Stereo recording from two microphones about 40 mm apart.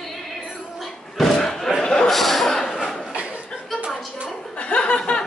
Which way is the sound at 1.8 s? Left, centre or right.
Centre.